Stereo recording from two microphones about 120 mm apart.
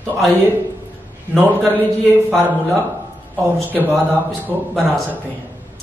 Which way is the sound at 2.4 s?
15° right (ahead or behind).